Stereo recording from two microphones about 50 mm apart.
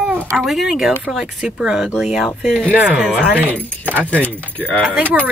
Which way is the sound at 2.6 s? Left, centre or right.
Right.